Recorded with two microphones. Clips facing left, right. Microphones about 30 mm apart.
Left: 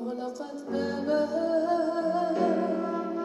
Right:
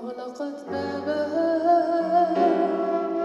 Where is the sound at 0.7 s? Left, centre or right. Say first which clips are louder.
Left 1 dB; right.